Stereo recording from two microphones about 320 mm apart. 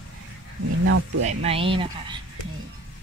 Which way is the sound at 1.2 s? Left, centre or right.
Right.